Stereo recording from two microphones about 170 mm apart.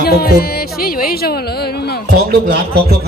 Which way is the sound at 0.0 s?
65° left (ahead or behind).